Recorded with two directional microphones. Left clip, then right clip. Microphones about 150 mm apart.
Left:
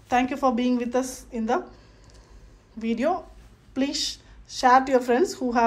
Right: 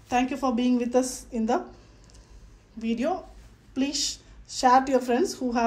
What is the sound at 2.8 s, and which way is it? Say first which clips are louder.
A woman's voice: left 3 dB; 15° right (ahead or behind).